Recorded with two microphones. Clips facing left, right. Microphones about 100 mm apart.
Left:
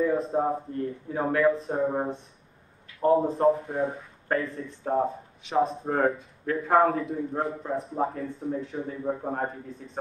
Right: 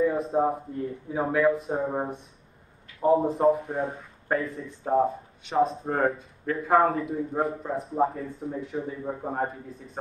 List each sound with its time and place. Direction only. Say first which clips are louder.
0.0 s speech: right 1 dB; centre (ahead or behind)